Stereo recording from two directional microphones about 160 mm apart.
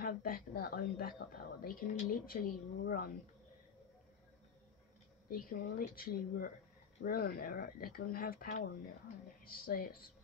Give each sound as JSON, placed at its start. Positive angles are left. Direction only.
{"t": 0.0, "sound": "speech", "side_deg": 65}
{"t": 5.3, "sound": "speech", "side_deg": 65}